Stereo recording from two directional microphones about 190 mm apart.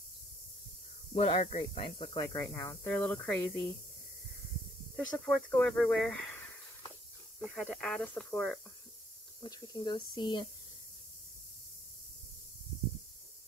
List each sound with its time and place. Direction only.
1.1 s speech: 35° left (ahead or behind)
2.3 s speech: 15° left (ahead or behind)
4.9 s speech: 5° left (ahead or behind)
9.4 s speech: 25° left (ahead or behind)